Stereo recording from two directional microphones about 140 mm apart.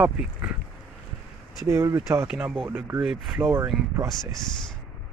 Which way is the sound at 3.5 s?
20° right (ahead or behind).